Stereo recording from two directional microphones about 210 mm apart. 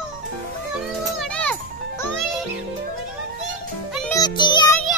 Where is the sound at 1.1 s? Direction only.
5° left (ahead or behind).